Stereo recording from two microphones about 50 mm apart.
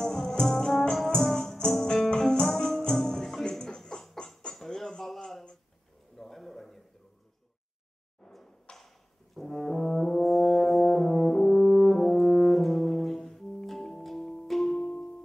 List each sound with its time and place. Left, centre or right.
0.0 s music: centre
4.6 s a sound: centre
8.2 s a sound: centre
8.7 s brass instrument: centre
13.2 s music: centre
13.7 s music: centre